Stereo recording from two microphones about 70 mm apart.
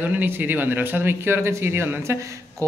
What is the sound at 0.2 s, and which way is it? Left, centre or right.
Speech, right.